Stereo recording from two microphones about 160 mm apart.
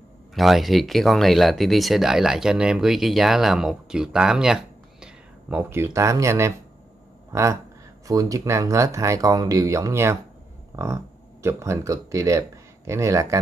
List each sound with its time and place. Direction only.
0.3 s speech: centre (ahead or behind); by 6.5 s 15° right (ahead or behind)
8.1 s speech: 20° right (ahead or behind)